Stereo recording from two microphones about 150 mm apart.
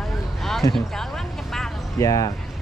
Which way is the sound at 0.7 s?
Centre (ahead or behind).